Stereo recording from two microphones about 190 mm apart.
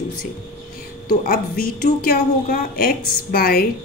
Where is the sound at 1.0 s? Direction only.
50° left (ahead or behind).